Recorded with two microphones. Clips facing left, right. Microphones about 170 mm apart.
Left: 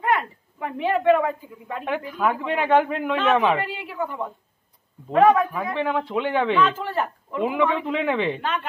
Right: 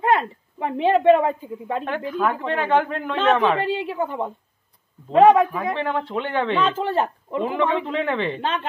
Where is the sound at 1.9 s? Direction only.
10° left (ahead or behind).